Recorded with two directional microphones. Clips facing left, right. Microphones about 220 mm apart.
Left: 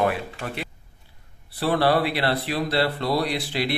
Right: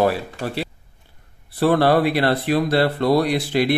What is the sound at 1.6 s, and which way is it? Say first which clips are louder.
Speech: right 5 dB; 45° right (ahead or behind).